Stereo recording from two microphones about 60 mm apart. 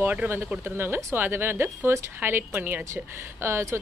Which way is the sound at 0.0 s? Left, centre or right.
Right.